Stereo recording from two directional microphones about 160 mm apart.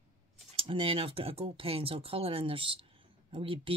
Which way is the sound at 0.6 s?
35° right (ahead or behind).